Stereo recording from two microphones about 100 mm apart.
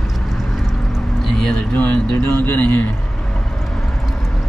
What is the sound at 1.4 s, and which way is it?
Speech, 5° left (ahead or behind).